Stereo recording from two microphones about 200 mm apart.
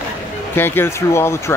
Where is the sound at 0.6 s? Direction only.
10° left (ahead or behind).